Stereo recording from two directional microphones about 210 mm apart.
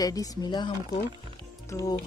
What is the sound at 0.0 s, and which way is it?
Speech, 15° left (ahead or behind).